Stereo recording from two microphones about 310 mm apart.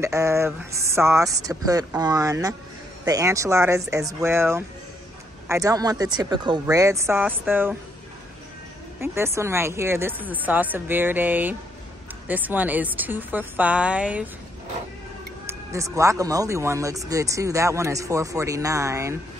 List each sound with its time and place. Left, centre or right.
0.0 s speech: centre
9.0 s a woman's voice: centre
15.4 s speech: centre